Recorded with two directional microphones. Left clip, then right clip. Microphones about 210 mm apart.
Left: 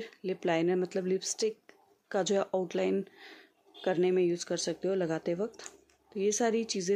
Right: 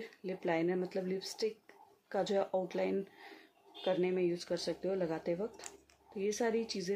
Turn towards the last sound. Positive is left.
turn(degrees=45)  # may be behind; listen again after turning